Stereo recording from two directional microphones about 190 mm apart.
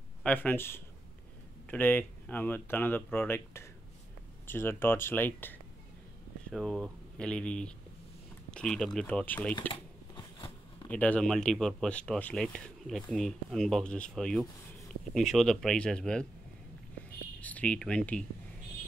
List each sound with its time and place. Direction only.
0.2 s speech: 10° left (ahead or behind)
10.1 s a sound: 25° left (ahead or behind)
10.9 s speech: 5° left (ahead or behind)
17.4 s speech: 10° left (ahead or behind)